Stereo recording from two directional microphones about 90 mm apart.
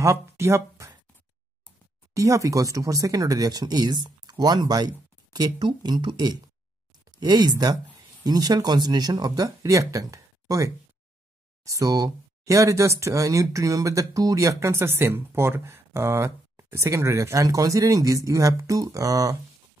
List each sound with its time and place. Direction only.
0.0 s speech: 30° right (ahead or behind)
2.1 s speech: 35° right (ahead or behind)